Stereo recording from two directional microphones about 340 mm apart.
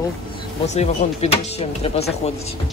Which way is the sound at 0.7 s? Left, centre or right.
Centre.